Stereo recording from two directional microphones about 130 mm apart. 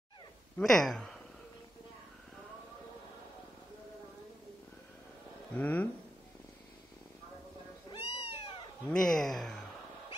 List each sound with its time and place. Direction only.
0.6 s speech: 5° left (ahead or behind)
5.5 s speech: 10° left (ahead or behind)
7.9 s cat: 50° left (ahead or behind)
8.8 s speech: 5° left (ahead or behind)